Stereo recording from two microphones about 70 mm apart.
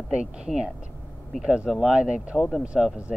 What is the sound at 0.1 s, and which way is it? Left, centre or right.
Speech, centre.